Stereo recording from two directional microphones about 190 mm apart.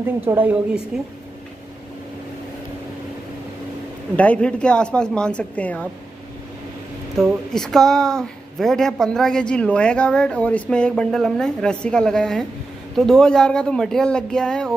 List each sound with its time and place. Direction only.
0.0 s a woman's voice: 10° right (ahead or behind)
4.2 s a woman's voice: 5° left (ahead or behind)
7.2 s a woman's voice: centre (ahead or behind)